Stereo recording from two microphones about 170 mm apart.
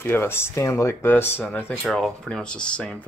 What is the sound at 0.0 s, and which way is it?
Speech, 15° left (ahead or behind).